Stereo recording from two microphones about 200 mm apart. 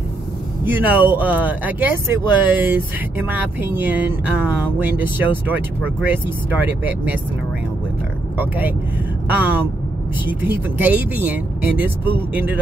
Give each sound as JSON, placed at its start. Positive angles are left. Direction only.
{"t": 0.7, "sound": "speech", "side_deg": -10}
{"t": 8.4, "sound": "speech", "side_deg": -10}